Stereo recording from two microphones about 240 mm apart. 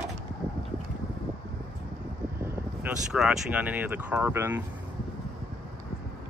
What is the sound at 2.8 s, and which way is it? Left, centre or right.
Speech, centre.